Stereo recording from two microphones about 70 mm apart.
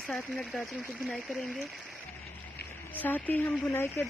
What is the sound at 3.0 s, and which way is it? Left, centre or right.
Speech, left.